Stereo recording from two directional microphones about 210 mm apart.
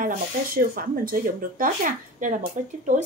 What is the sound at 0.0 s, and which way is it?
A woman's voice, 45° right (ahead or behind).